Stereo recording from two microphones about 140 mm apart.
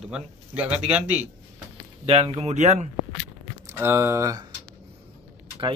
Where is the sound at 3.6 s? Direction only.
20° right (ahead or behind).